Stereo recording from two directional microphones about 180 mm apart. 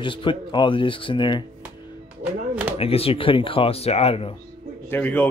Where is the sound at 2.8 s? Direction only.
30° left (ahead or behind).